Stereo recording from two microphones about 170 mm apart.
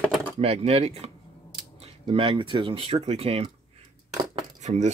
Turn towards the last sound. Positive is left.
turn(degrees=-45)  # may be behind; listen again after turning